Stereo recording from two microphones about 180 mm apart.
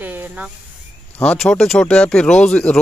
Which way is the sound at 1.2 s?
5° left (ahead or behind).